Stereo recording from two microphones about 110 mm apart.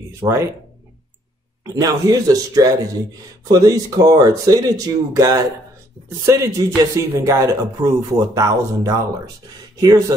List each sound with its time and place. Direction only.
0.2 s speech: 25° right (ahead or behind)
1.6 s speech: 35° right (ahead or behind)